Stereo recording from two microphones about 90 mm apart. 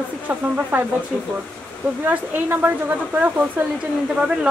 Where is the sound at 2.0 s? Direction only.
20° right (ahead or behind).